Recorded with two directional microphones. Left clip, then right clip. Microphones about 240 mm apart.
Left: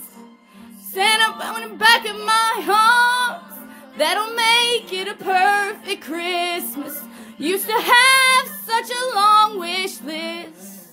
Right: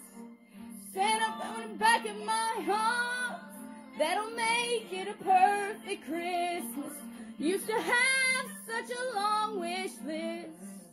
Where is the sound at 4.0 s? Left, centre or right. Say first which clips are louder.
Left 12 dB; centre.